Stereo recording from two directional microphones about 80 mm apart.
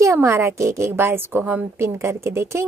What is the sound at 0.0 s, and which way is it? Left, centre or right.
A woman's voice, right.